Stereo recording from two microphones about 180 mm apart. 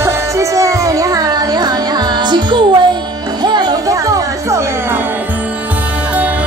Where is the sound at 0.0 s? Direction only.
15° right (ahead or behind).